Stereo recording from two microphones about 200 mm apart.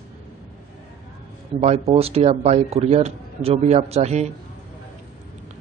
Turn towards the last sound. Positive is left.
turn(degrees=-35)  # may be behind; listen again after turning